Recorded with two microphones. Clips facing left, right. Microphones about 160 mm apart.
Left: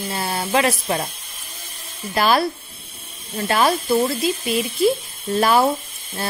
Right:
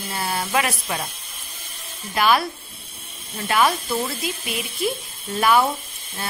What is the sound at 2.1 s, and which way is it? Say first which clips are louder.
Speech: left 2 dB; 35° left (ahead or behind).